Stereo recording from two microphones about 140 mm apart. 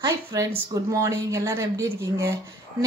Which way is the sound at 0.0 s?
25° right (ahead or behind).